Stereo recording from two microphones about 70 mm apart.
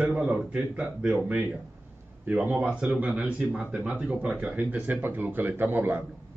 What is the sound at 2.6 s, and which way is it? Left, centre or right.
A man's voice, centre.